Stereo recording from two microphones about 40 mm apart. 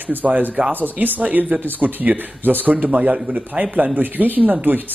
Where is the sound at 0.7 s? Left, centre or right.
Right.